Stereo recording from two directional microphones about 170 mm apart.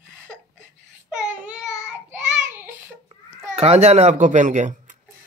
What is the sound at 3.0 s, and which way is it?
A child's voice, 35° right (ahead or behind).